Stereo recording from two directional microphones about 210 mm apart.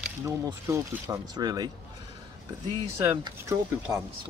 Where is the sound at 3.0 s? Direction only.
15° right (ahead or behind).